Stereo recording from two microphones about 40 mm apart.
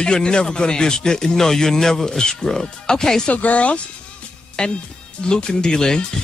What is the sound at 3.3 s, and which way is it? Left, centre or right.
Speech, left.